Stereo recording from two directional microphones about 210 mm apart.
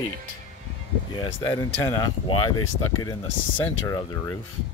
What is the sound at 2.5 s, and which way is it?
Speech, 90° left.